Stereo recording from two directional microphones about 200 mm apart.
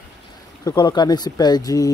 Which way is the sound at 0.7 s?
20° left (ahead or behind).